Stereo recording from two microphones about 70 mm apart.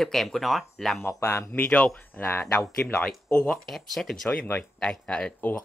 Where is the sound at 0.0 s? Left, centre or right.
Centre.